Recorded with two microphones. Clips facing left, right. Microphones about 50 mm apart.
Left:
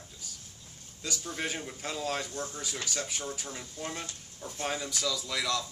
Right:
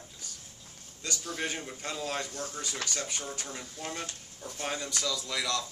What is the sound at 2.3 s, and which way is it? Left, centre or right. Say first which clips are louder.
Speech: left 1 dB; left.